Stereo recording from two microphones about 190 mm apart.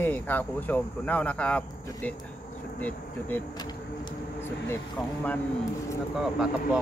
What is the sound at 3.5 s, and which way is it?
Speech, 20° left (ahead or behind).